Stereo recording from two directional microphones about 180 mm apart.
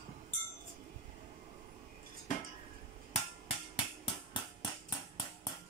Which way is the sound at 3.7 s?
30° left (ahead or behind).